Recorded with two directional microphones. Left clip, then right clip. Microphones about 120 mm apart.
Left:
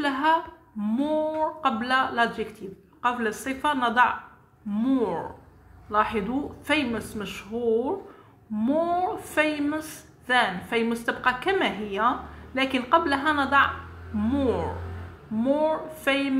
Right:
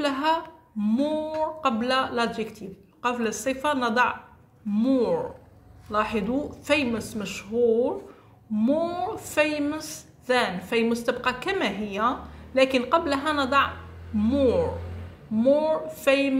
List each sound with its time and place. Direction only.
0.0 s a woman's voice: 35° right (ahead or behind)